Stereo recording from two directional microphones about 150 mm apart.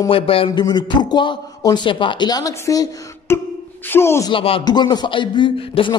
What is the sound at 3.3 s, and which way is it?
A man's voice, 15° left (ahead or behind).